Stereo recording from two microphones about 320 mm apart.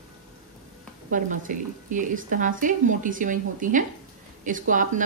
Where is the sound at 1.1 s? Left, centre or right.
Right.